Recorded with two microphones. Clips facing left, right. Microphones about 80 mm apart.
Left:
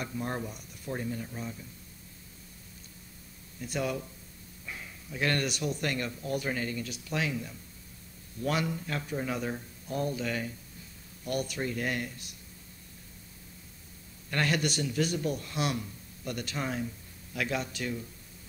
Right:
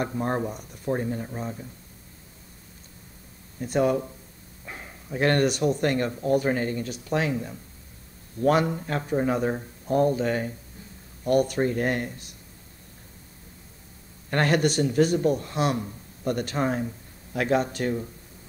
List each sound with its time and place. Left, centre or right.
0.0 s a man's voice: right
3.5 s a man's voice: right
14.3 s a man's voice: right